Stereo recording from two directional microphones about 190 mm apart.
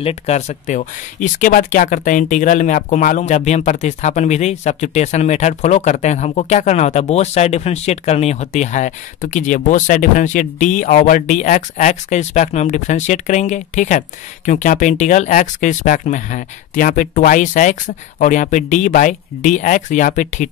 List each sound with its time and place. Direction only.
0.0 s speech: 35° left (ahead or behind)